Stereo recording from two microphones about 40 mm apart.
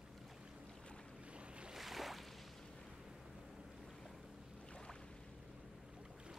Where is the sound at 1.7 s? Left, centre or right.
Centre.